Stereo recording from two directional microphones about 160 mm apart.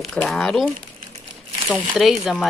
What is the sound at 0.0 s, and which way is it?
Speech, 5° left (ahead or behind).